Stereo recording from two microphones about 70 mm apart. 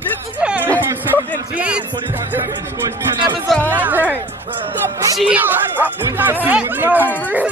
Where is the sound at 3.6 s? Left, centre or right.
Right.